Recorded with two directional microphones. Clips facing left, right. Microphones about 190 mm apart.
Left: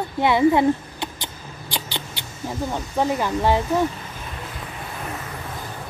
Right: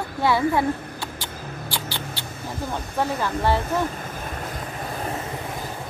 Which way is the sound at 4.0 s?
50° right (ahead or behind).